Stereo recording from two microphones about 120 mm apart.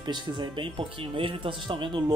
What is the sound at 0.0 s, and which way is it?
Speech, 40° right (ahead or behind).